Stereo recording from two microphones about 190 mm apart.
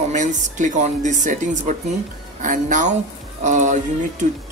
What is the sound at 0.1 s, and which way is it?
Speech, 40° right (ahead or behind).